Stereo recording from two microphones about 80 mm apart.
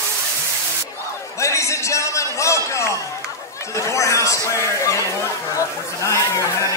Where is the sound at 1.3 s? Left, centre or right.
Left.